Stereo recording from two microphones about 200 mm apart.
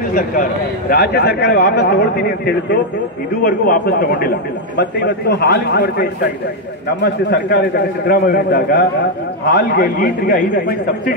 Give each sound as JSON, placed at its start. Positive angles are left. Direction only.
{"t": 0.1, "sound": "a man's voice", "side_deg": 45}